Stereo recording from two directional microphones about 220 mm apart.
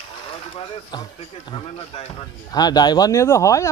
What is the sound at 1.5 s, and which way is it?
Speech, 25° left (ahead or behind).